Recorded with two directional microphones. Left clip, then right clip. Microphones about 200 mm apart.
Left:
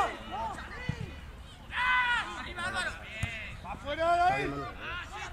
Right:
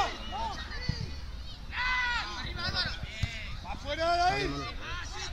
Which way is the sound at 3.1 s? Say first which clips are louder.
Left 1 dB; 15° left (ahead or behind).